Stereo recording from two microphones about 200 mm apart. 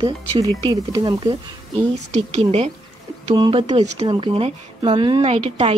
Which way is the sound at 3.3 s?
20° right (ahead or behind).